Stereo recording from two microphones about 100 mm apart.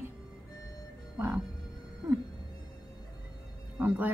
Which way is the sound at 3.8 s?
15° right (ahead or behind).